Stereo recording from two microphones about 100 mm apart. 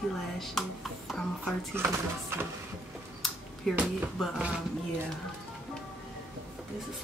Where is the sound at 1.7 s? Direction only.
25° right (ahead or behind).